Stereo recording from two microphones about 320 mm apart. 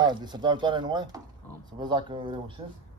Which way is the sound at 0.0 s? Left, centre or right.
Centre.